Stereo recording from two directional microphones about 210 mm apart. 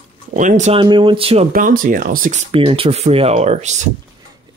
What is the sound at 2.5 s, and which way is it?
Speech, 25° right (ahead or behind).